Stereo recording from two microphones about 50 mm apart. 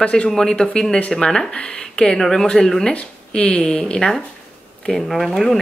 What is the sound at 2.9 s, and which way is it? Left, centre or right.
Speech, left.